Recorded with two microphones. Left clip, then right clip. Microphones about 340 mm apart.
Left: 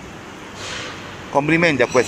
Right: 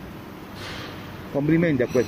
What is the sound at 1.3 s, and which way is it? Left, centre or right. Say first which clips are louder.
Speech: left 6 dB; left.